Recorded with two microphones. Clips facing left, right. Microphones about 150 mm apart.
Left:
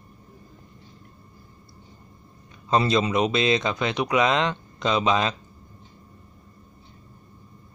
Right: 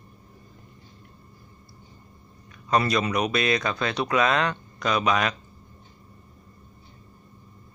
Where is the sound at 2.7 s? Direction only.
25° left (ahead or behind).